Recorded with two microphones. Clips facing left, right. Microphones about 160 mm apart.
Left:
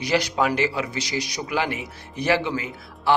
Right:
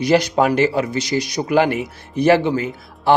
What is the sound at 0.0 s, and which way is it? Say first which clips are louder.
Speech: right 7 dB; 50° right (ahead or behind).